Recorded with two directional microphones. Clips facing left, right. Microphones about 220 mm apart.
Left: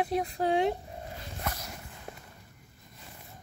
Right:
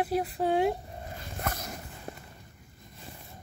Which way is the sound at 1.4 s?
50° right (ahead or behind).